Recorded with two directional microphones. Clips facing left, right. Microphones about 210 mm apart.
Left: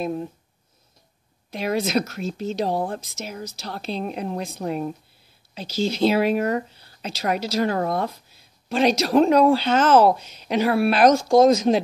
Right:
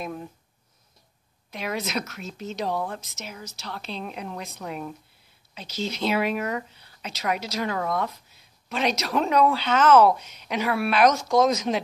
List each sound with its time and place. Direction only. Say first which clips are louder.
0.0 s a woman's voice: left 7 dB; 30° left (ahead or behind)
1.5 s a woman's voice: left 7 dB; 35° left (ahead or behind)